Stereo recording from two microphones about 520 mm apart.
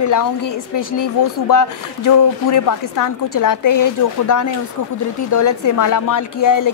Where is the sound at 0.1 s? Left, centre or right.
Left.